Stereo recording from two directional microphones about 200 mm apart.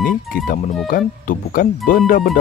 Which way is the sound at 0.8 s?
45° left (ahead or behind).